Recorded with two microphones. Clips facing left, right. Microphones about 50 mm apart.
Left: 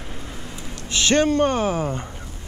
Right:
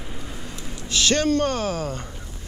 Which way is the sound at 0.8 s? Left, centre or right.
Left.